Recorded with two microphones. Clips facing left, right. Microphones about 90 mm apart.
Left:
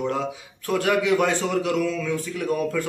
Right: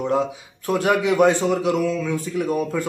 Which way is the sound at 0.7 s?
20° right (ahead or behind).